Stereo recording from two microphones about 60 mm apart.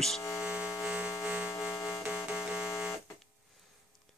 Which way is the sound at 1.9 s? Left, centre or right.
Centre.